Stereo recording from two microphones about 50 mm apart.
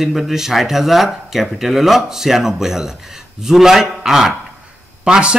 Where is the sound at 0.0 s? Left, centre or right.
Centre.